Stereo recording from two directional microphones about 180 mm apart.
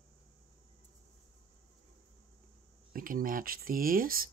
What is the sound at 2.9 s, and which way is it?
Speech, 50° right (ahead or behind).